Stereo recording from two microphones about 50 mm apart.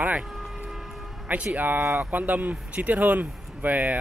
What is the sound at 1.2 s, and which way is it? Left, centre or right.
Speech, right.